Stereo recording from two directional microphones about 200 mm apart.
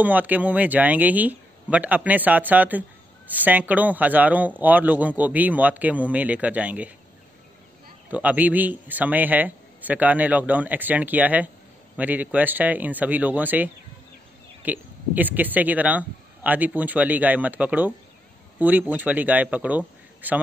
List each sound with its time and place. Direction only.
0.0 s speech: 10° right (ahead or behind)
8.1 s speech: 5° right (ahead or behind)